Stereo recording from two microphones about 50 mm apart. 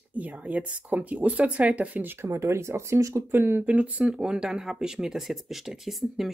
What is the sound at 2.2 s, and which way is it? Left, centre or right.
Speech, right.